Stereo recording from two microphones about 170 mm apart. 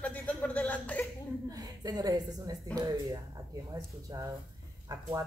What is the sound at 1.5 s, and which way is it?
Speech, 20° right (ahead or behind).